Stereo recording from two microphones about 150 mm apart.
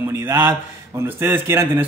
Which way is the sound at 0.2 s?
15° right (ahead or behind).